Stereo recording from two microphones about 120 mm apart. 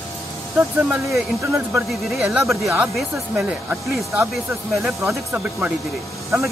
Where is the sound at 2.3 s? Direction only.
5° right (ahead or behind).